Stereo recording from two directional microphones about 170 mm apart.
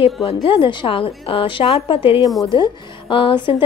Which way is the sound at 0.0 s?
35° left (ahead or behind).